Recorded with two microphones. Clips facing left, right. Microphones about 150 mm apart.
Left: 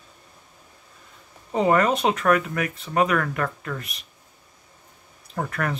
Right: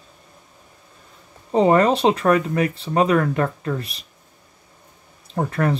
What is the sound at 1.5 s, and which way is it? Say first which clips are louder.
Speech: right 4 dB; 30° right (ahead or behind).